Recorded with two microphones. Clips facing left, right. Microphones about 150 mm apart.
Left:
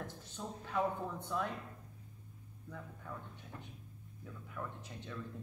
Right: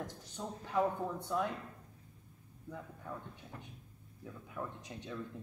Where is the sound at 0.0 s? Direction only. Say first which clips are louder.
Right 2 dB; 15° right (ahead or behind).